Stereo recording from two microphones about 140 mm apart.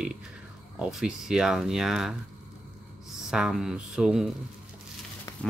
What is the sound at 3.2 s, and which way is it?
Speech, 5° right (ahead or behind).